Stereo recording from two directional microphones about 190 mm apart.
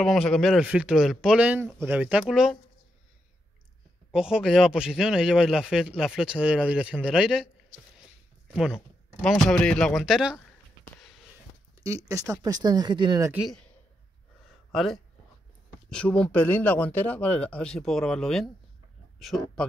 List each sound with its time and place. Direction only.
0.0 s speech: centre (ahead or behind)
4.1 s speech: 5° right (ahead or behind)
8.5 s speech: centre (ahead or behind)
11.8 s speech: 15° right (ahead or behind)
13.3 s speech: centre (ahead or behind)
14.7 s speech: centre (ahead or behind)